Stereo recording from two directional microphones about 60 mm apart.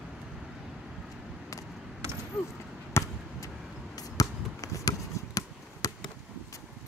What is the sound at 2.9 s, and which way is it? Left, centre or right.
Basketball bounce, left.